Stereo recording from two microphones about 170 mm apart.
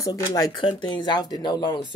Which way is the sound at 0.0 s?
20° left (ahead or behind).